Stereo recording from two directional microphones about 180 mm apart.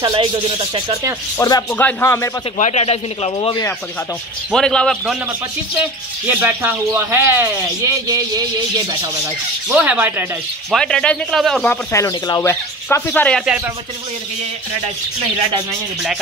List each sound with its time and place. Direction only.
0.0 s speech: 30° right (ahead or behind)
1.4 s speech: 15° left (ahead or behind)
2.6 s a man's voice: 35° left (ahead or behind)
4.5 s speech: 5° left (ahead or behind)
5.8 s speech: 10° right (ahead or behind)
9.7 s speech: 10° right (ahead or behind)
10.7 s speech: 5° left (ahead or behind)
11.7 s speech: 15° left (ahead or behind)